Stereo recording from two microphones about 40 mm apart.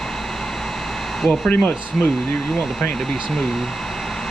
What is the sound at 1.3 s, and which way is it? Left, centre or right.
Speech, left.